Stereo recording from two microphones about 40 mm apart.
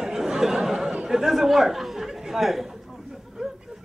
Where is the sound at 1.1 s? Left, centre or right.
Centre.